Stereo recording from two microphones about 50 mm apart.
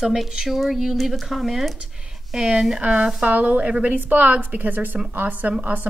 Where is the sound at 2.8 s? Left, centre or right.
Right.